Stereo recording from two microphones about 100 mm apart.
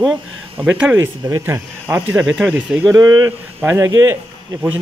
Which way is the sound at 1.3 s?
25° right (ahead or behind).